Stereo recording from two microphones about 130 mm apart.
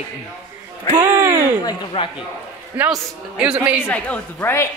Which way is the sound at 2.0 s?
45° left (ahead or behind).